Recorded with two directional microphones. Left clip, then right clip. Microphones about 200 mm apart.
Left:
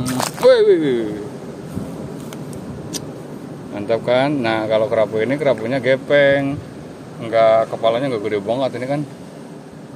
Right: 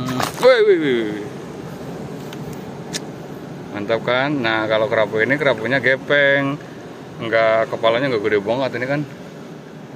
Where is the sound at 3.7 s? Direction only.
15° left (ahead or behind).